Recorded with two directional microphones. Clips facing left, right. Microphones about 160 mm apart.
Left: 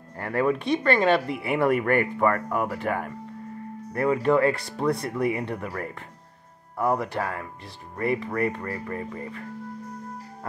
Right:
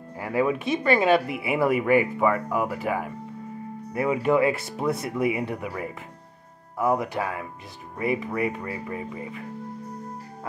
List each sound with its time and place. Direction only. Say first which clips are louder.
0.2 s speech: even; 5° right (ahead or behind)